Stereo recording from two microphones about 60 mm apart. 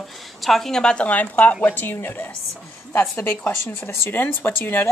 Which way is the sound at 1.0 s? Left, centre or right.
Left.